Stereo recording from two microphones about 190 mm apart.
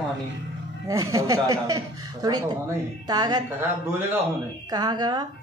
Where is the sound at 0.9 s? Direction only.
15° right (ahead or behind).